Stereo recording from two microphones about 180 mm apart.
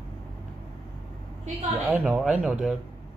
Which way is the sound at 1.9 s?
5° right (ahead or behind).